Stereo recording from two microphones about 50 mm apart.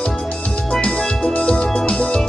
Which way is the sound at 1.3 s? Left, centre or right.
Left.